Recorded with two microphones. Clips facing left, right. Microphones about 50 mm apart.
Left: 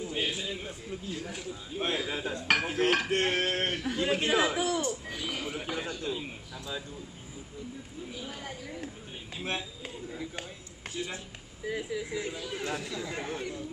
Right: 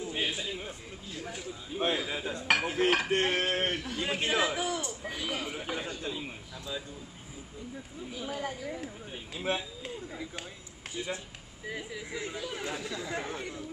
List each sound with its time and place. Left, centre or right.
0.0 s a sound: centre
0.5 s a man's voice: centre
5.0 s speech: centre
8.3 s a man's voice: centre
9.8 s speech: centre
11.6 s a man's voice: centre